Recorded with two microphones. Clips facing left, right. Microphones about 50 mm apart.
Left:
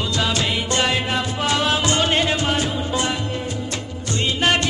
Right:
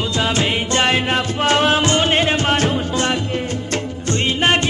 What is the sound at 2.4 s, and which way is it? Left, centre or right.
Music, right.